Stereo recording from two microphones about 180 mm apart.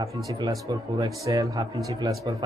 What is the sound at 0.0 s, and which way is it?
Speech, 20° right (ahead or behind).